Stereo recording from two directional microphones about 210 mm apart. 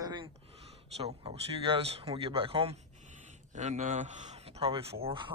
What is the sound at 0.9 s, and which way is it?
Speech, 30° right (ahead or behind).